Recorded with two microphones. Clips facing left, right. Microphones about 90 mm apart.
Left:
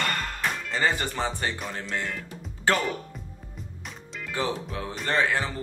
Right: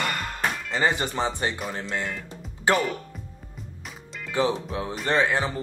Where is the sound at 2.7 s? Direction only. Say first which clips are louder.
Right 2 dB; 15° right (ahead or behind).